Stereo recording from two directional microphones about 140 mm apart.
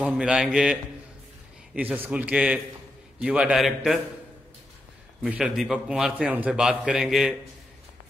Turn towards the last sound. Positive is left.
turn(degrees=-5)  # may be behind; listen again after turning